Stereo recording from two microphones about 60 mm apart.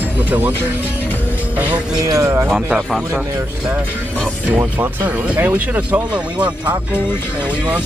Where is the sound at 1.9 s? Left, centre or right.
Right.